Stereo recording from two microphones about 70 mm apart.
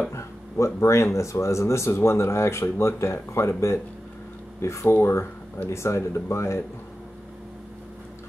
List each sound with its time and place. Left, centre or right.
0.1 s speech: left